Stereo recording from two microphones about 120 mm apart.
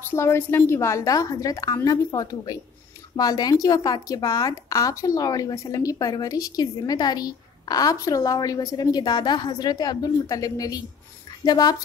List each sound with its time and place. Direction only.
0.0 s a woman's voice: 20° left (ahead or behind)